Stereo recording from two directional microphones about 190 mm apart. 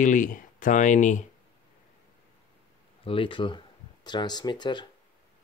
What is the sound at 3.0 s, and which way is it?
Speech, 25° left (ahead or behind).